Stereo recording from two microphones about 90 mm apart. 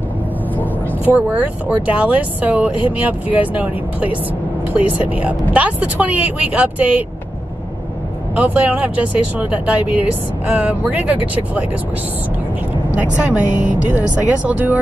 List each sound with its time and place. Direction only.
1.0 s a woman's voice: 20° right (ahead or behind)
8.4 s a woman's voice: 15° right (ahead or behind)
12.9 s a woman's voice: 15° right (ahead or behind)